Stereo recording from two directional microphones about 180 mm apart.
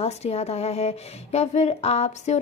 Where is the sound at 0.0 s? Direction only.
35° left (ahead or behind).